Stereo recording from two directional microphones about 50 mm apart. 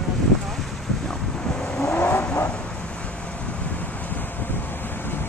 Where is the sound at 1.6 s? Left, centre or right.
Centre.